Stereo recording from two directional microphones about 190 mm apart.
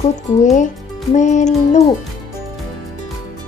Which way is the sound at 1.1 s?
40° left (ahead or behind).